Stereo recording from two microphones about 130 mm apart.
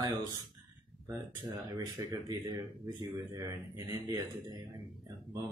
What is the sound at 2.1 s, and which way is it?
Speech, 35° right (ahead or behind).